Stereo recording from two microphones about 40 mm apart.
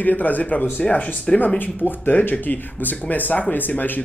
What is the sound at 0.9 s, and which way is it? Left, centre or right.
Speech, left.